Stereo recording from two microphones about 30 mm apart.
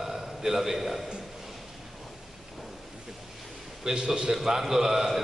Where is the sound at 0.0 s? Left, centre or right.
Centre.